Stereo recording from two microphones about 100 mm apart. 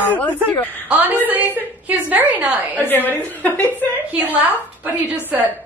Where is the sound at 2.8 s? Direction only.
20° left (ahead or behind).